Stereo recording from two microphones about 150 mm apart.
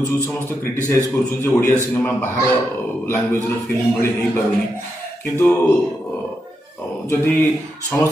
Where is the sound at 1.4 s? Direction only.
15° left (ahead or behind).